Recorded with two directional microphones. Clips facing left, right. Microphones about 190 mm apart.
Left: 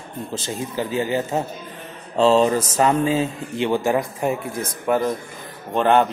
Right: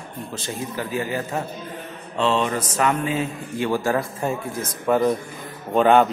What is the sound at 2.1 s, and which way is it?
Speech, 35° left (ahead or behind).